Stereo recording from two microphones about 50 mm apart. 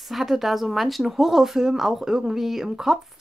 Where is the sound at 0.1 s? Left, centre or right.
Centre.